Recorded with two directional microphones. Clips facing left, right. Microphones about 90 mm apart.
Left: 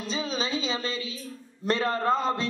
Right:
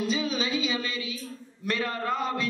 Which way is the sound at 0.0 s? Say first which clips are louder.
Right 2 dB; 30° left (ahead or behind).